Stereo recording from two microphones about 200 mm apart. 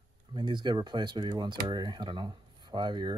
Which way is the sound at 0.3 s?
20° right (ahead or behind).